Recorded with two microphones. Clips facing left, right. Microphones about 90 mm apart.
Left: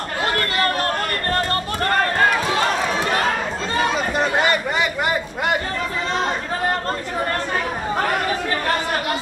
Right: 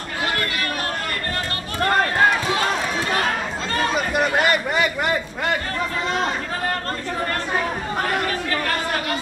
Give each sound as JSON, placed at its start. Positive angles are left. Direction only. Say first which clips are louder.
{"t": 0.2, "sound": "chatter", "louder": "left 4 dB", "side_deg": 35}
{"t": 3.9, "sound": "run", "louder": "even", "side_deg": -10}
{"t": 4.4, "sound": "a sound", "louder": "even", "side_deg": 0}